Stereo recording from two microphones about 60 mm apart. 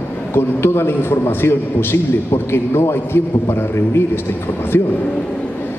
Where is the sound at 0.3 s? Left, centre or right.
Left.